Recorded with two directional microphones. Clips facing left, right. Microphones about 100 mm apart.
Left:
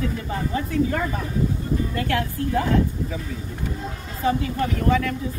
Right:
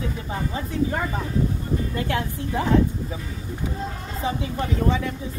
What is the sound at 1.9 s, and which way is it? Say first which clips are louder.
Speech: left 2 dB; 20° right (ahead or behind).